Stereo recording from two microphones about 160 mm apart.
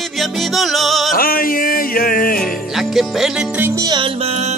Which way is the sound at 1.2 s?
65° left (ahead or behind).